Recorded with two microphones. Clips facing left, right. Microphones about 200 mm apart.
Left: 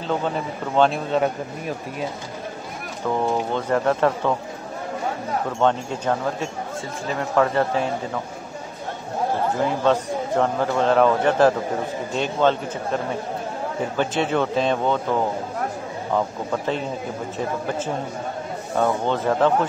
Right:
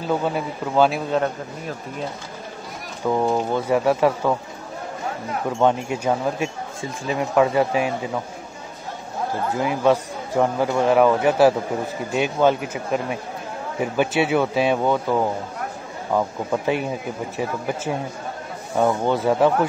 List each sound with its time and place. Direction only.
0.0 s speech: 10° right (ahead or behind)
3.0 s a man's voice: 10° right (ahead or behind)
5.6 s a man's voice: 10° right (ahead or behind)
9.6 s a man's voice: 10° right (ahead or behind)